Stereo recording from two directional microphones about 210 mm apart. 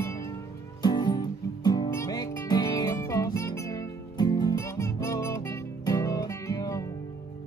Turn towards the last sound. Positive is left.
turn(degrees=15)  # may be behind; listen again after turning